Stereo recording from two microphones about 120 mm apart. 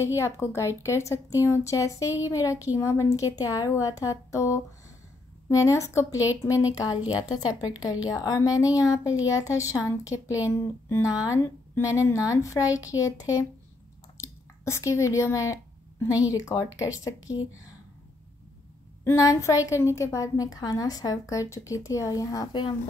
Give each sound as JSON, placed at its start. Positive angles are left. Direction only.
{"t": 0.0, "sound": "a woman's voice", "side_deg": 25}
{"t": 8.1, "sound": "a woman's voice", "side_deg": 30}
{"t": 19.0, "sound": "a woman's voice", "side_deg": 25}